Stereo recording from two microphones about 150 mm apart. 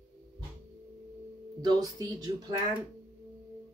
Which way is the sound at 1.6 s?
25° right (ahead or behind).